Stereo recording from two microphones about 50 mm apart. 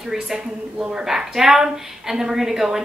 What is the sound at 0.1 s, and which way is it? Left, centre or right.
A woman's voice, centre.